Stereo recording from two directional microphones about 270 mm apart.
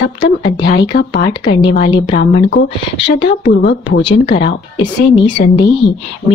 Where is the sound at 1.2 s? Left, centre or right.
Left.